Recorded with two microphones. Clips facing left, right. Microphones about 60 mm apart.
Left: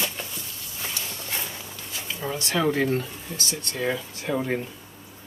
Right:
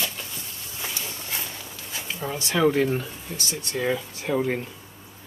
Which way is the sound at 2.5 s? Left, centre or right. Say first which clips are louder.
Right 2 dB; centre.